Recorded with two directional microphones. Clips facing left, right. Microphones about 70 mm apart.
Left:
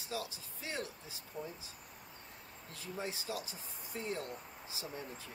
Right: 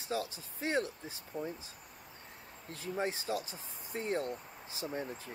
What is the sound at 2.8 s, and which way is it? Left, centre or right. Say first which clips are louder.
Speech: right 6 dB; right.